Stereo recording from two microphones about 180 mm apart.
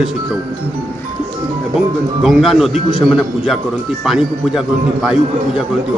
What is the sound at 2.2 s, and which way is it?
Speech, centre (ahead or behind).